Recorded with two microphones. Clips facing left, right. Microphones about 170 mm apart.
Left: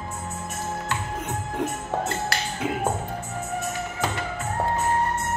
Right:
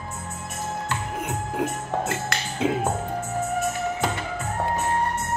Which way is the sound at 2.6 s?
25° right (ahead or behind).